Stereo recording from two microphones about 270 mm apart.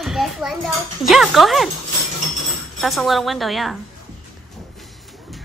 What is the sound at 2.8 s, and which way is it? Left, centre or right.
A woman's voice, centre.